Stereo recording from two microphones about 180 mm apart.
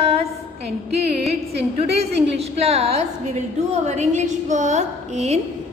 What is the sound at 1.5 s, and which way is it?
A woman's voice, 35° right (ahead or behind).